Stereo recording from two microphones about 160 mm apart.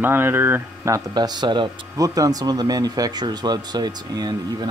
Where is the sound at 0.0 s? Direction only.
15° right (ahead or behind).